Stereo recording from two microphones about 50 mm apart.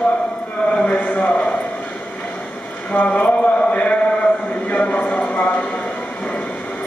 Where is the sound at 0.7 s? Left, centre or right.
Centre.